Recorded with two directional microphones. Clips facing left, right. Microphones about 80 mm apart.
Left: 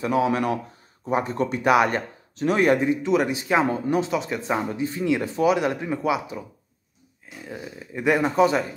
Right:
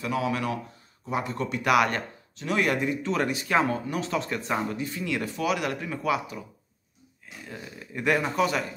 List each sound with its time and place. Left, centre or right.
0.0 s speech: left
2.3 s speech: left; by 6.4 s centre
7.4 s speech: centre